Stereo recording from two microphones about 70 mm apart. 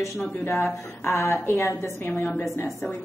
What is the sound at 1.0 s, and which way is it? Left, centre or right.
A woman's voice, left.